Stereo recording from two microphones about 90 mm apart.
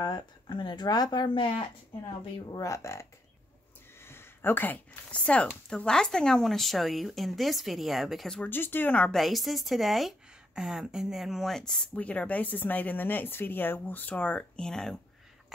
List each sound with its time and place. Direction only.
0.0 s speech: 55° left (ahead or behind); by 1.6 s 70° left (ahead or behind)
2.5 s speech: 35° left (ahead or behind)
4.1 s a woman's voice: 25° left (ahead or behind); by 8.5 s 5° left (ahead or behind)
8.5 s speech: 25° left (ahead or behind)
9.1 s a woman's voice: centre (ahead or behind)
12.0 s speech: 15° left (ahead or behind)